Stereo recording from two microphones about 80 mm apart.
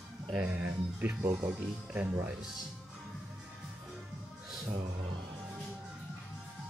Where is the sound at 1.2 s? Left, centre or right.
Right.